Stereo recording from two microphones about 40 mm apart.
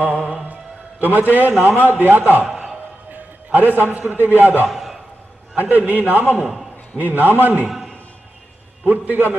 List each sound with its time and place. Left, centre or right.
0.5 s mantra: right
1.3 s a man's voice: right
3.1 s a sound: right
4.2 s a man's voice: right
4.6 s a man's voice: centre
5.6 s a man's voice: right
8.8 s a man's voice: right